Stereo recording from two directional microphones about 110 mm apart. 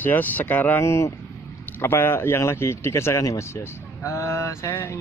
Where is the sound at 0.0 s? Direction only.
15° left (ahead or behind).